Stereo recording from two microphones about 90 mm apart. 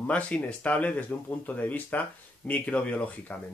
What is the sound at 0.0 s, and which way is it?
Speech, 15° left (ahead or behind).